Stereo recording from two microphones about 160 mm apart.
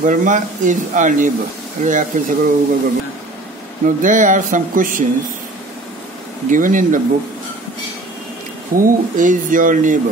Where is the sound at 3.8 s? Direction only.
55° right (ahead or behind).